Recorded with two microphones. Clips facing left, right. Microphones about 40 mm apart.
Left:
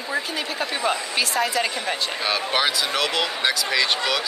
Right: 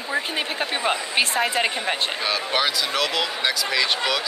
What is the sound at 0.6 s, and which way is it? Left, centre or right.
Speech, right.